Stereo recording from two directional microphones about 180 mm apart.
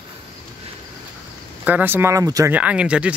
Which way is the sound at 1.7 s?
10° right (ahead or behind).